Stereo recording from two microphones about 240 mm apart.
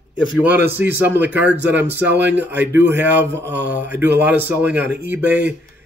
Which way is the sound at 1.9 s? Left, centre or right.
Right.